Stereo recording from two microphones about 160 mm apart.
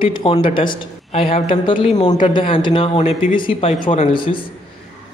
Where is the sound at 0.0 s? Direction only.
30° left (ahead or behind).